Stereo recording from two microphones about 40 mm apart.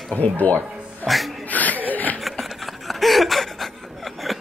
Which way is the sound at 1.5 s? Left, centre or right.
Left.